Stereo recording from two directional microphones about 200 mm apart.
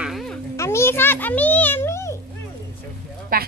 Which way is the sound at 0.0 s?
Centre (ahead or behind).